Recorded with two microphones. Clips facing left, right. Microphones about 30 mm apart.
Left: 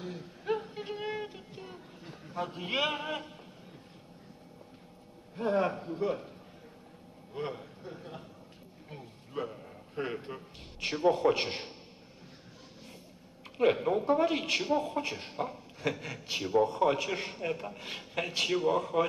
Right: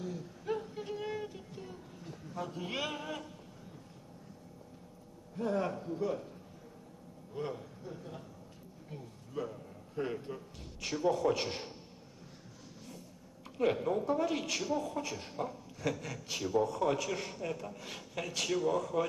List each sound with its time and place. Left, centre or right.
0.0 s a sound: left
5.3 s a man's voice: left
7.3 s a man's voice: left
13.6 s a man's voice: left